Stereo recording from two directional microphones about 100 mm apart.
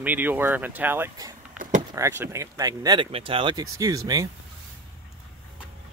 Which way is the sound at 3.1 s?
65° right (ahead or behind).